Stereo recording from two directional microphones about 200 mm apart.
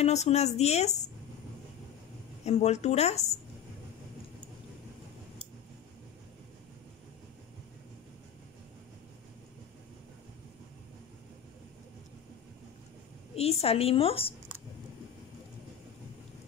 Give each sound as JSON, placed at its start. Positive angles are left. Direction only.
{"t": 0.0, "sound": "speech", "side_deg": 35}
{"t": 2.4, "sound": "speech", "side_deg": 35}
{"t": 13.4, "sound": "a woman's voice", "side_deg": 30}